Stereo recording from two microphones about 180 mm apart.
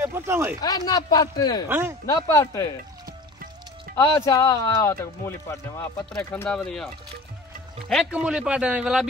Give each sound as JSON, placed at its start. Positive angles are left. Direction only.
{"t": 0.0, "sound": "speech", "side_deg": -10}
{"t": 0.6, "sound": "speech", "side_deg": 20}
{"t": 1.7, "sound": "speech", "side_deg": -10}
{"t": 2.0, "sound": "speech", "side_deg": 20}
{"t": 4.0, "sound": "a man's voice", "side_deg": 20}
{"t": 7.9, "sound": "a man's voice", "side_deg": -5}